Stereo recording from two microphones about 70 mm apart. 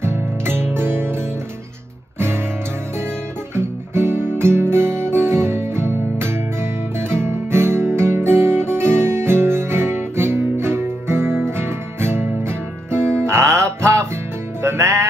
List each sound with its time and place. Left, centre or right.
0.0 s music: right
3.5 s music: right